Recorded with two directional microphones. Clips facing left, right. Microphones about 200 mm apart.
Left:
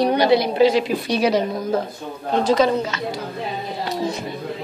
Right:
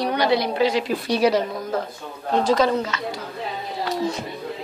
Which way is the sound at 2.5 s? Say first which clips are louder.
Left 3 dB; 20° left (ahead or behind).